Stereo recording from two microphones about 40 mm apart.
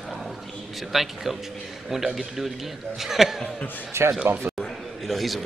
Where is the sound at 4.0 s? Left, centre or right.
Right.